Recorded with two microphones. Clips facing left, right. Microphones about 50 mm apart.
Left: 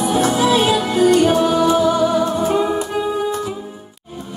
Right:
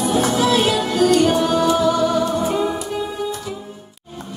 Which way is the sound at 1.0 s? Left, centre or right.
Centre.